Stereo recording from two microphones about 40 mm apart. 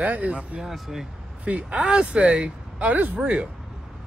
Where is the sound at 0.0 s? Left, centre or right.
Right.